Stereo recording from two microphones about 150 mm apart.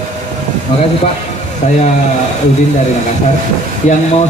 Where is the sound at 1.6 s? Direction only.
50° left (ahead or behind).